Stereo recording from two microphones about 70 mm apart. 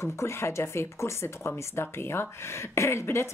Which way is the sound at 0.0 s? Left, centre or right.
Left.